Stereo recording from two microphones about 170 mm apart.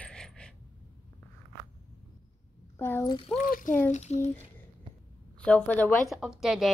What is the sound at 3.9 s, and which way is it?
Speech, 45° left (ahead or behind).